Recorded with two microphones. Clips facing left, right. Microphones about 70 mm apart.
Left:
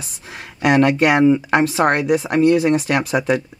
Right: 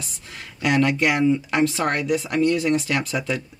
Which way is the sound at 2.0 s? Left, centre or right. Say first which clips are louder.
Left 5 dB; left.